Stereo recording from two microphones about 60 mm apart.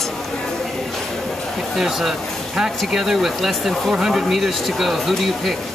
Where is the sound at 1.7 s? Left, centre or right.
Centre.